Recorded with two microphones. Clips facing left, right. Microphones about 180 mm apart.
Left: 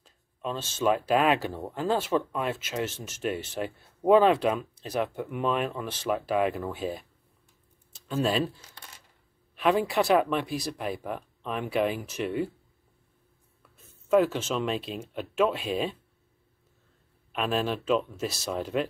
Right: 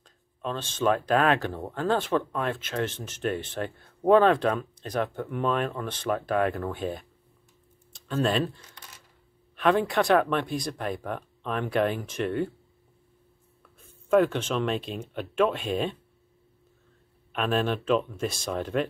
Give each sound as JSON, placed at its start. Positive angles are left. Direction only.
{"t": 0.0, "sound": "speech", "side_deg": 5}
{"t": 13.6, "sound": "speech", "side_deg": 5}
{"t": 17.3, "sound": "speech", "side_deg": 0}